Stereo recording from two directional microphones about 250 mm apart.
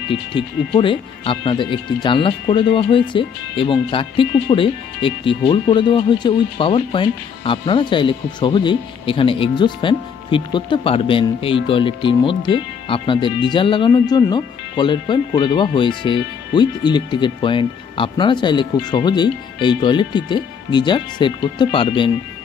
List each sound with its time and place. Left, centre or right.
0.1 s speech: centre